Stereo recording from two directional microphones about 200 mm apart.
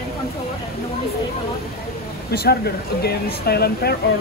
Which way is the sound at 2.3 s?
50° left (ahead or behind).